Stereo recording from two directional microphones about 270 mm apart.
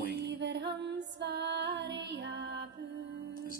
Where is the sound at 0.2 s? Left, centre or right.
Right.